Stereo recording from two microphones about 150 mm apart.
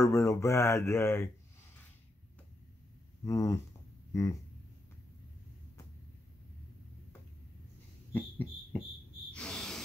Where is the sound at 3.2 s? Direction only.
20° left (ahead or behind).